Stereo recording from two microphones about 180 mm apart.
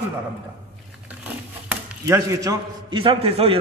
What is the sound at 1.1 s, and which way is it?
Speech, 10° right (ahead or behind).